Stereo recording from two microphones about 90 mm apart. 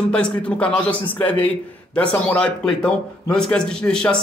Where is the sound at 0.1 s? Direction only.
10° left (ahead or behind).